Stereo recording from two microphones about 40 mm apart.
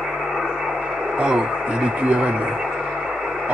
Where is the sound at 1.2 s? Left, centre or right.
Right.